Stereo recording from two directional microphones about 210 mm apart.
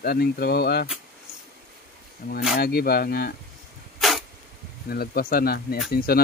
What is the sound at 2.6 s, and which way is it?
Speech, 45° left (ahead or behind).